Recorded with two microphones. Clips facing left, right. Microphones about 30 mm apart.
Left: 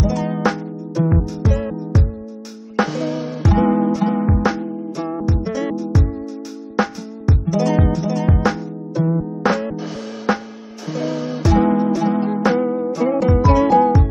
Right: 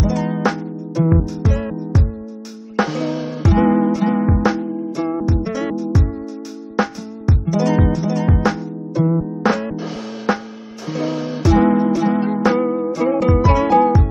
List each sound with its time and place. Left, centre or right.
0.0 s music: centre
12.6 s music: centre